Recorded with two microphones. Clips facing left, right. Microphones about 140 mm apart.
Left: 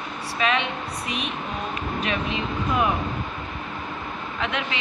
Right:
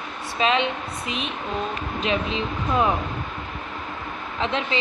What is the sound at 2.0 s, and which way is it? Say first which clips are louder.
Speech: right 4 dB; 25° right (ahead or behind).